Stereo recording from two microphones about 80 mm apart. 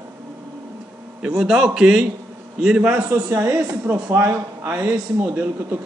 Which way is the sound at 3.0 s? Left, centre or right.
Right.